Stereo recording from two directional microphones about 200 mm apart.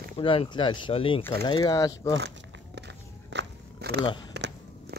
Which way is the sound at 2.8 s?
60° right (ahead or behind).